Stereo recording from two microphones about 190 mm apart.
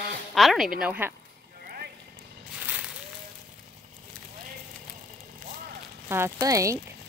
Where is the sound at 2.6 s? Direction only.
5° right (ahead or behind).